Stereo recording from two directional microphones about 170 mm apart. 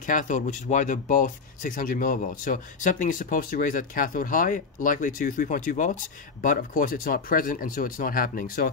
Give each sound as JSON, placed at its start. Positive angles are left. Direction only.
{"t": 0.0, "sound": "speech", "side_deg": 50}